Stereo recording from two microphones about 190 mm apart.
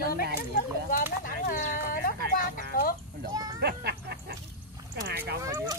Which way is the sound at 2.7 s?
50° left (ahead or behind).